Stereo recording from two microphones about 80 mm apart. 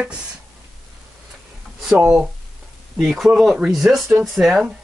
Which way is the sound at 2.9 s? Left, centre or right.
Centre.